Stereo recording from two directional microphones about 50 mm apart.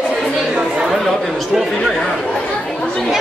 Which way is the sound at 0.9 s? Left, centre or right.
Centre.